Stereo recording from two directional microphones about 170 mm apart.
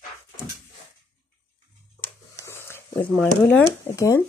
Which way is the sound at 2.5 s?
15° left (ahead or behind).